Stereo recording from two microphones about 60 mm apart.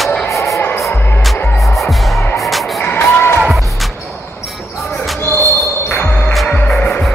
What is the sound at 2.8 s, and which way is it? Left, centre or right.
Music, left.